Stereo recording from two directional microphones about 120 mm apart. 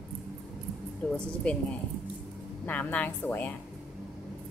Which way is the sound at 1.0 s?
15° left (ahead or behind).